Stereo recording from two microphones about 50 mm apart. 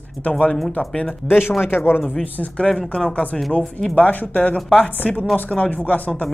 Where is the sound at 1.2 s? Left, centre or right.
Left.